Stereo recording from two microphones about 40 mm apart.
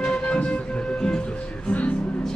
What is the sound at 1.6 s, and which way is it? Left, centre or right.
Music, left.